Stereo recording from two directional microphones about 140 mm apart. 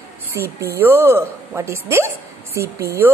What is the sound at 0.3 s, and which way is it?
A woman's voice, 20° right (ahead or behind).